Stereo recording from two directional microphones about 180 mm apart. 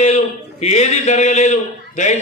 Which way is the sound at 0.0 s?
35° left (ahead or behind).